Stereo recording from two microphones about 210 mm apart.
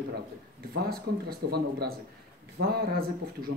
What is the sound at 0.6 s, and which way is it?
A man's voice, 45° right (ahead or behind).